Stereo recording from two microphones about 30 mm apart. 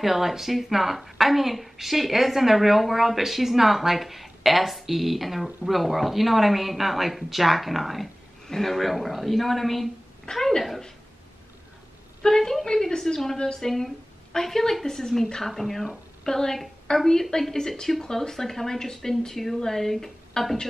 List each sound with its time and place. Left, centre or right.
0.0 s a woman's voice: centre
8.5 s a woman's voice: centre
10.3 s speech: left
12.2 s a woman's voice: centre
16.3 s a woman's voice: centre